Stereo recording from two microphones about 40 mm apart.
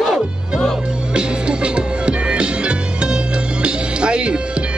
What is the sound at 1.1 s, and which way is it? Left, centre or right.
Music, right.